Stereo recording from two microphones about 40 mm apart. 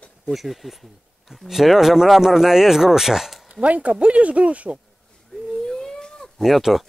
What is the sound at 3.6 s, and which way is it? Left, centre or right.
Speech, right.